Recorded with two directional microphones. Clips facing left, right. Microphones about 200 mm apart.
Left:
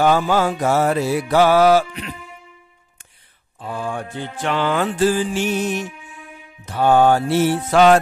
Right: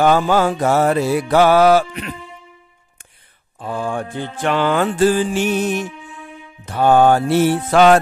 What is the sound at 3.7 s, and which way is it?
Mantra, 50° right (ahead or behind).